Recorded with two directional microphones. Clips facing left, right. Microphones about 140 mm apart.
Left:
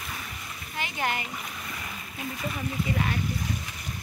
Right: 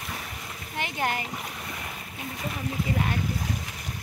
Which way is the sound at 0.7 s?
50° right (ahead or behind).